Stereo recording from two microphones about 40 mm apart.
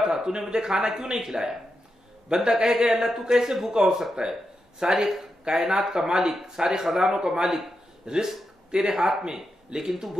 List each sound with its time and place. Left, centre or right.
0.0 s speech: centre